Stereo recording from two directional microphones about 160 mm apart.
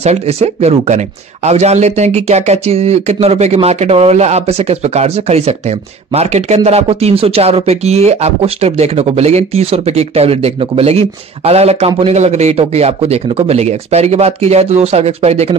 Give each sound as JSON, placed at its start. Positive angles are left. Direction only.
{"t": 0.0, "sound": "speech", "side_deg": -40}